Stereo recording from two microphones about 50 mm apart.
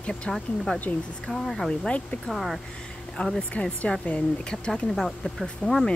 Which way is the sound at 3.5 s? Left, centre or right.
Left.